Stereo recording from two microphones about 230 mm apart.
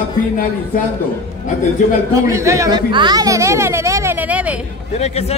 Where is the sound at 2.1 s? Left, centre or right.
Centre.